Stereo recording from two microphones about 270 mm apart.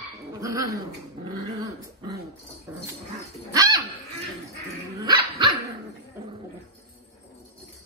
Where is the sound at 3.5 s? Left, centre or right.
Centre.